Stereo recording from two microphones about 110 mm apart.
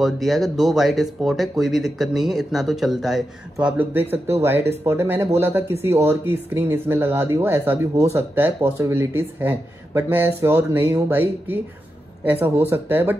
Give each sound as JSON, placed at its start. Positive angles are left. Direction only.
{"t": 0.0, "sound": "speech", "side_deg": 0}